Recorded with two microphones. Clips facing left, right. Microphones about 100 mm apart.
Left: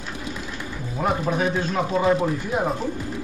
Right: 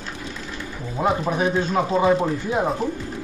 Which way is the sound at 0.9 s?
20° right (ahead or behind).